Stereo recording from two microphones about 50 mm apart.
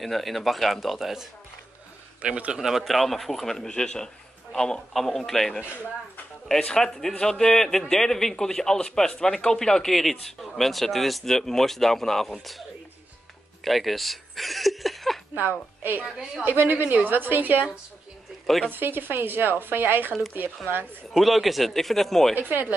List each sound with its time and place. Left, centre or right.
0.0 s speech: centre
2.2 s speech: right
2.6 s speech: centre
6.6 s speech: centre
13.7 s speech: centre
16.4 s a woman's voice: right
18.7 s a woman's voice: right
21.1 s speech: centre
22.3 s a woman's voice: right